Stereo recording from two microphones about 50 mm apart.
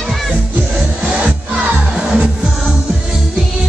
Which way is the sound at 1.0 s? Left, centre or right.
Centre.